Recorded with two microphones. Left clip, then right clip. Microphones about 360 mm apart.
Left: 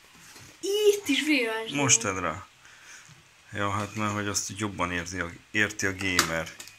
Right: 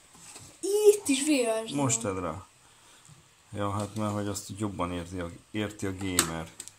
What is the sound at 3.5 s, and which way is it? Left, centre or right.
Speech, centre.